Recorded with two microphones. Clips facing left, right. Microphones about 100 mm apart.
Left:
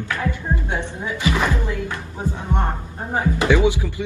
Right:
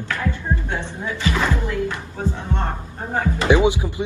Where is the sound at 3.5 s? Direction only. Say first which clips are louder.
Right 3 dB; 20° right (ahead or behind).